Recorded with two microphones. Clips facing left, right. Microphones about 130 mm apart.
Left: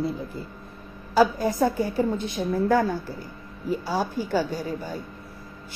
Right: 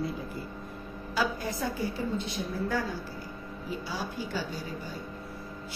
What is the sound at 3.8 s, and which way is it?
Speech, 45° left (ahead or behind).